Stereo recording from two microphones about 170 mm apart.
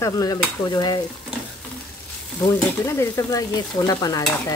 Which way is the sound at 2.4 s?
15° left (ahead or behind).